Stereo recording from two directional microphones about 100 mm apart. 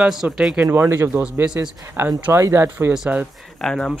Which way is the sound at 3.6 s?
5° left (ahead or behind).